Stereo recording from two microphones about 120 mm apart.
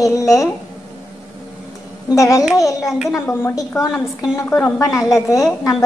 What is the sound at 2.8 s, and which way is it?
A woman's voice, 5° right (ahead or behind).